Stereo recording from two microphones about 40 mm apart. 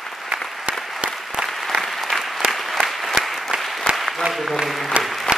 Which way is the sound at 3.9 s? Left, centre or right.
Right.